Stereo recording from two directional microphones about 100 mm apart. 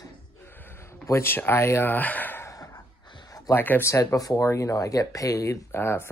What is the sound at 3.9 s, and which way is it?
Speech, 30° left (ahead or behind).